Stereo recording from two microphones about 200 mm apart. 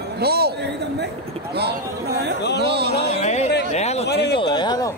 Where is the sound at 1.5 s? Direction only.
55° right (ahead or behind).